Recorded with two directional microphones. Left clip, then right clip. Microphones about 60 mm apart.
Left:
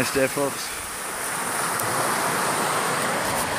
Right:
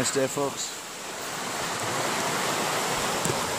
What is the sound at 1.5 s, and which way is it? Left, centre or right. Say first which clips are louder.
Waves: left 4 dB; centre.